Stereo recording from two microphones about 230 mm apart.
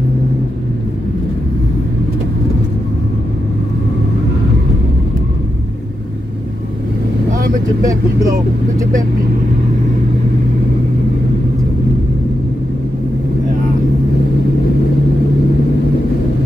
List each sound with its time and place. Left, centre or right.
7.4 s vehicle: right